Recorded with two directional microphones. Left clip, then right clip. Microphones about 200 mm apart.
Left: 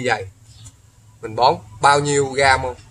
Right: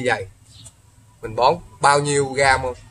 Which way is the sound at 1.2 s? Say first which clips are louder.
Left 1 dB; 15° left (ahead or behind).